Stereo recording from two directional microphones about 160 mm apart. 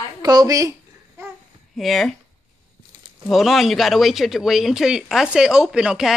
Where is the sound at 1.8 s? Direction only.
Centre (ahead or behind).